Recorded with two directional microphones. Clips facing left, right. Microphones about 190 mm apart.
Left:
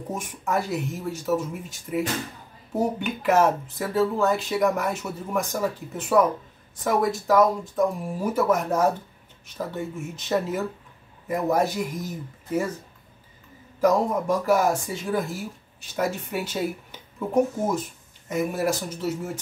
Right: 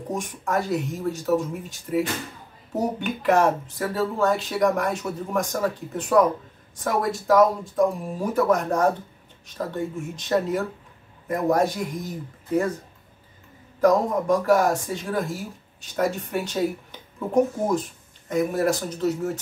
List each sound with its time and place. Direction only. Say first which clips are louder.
0.1 s speech: right 1 dB; 5° left (ahead or behind)
13.7 s speech: right 2 dB; 5° left (ahead or behind)